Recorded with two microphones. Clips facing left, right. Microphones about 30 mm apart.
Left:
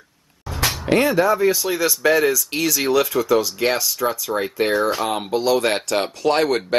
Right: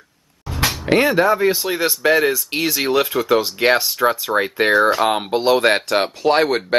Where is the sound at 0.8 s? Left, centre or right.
Centre.